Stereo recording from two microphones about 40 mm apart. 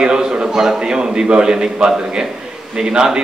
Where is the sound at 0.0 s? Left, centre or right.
Centre.